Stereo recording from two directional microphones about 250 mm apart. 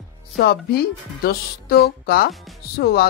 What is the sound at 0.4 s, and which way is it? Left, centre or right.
Speech, left.